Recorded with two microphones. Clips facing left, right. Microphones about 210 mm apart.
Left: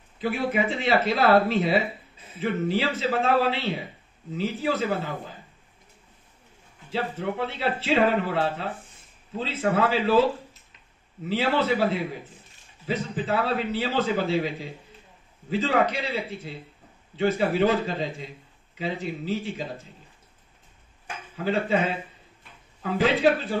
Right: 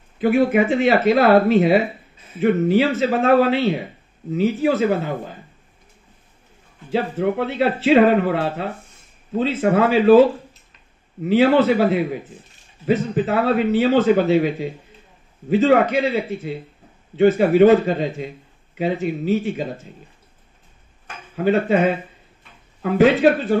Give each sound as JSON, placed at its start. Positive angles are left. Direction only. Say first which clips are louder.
{"t": 0.2, "sound": "speech", "louder": "right 9 dB", "side_deg": -55}
{"t": 6.9, "sound": "speech", "louder": "right 8 dB", "side_deg": -60}
{"t": 11.2, "sound": "speech", "louder": "right 9 dB", "side_deg": -55}
{"t": 12.8, "sound": "speech", "louder": "right 9 dB", "side_deg": -60}
{"t": 14.0, "sound": "speech", "louder": "right 9 dB", "side_deg": -60}
{"t": 21.4, "sound": "speech", "louder": "right 7 dB", "side_deg": -60}